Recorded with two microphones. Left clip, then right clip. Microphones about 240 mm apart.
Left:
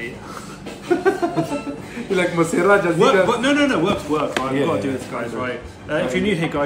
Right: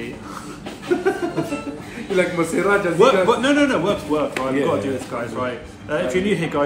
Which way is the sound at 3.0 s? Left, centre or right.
Centre.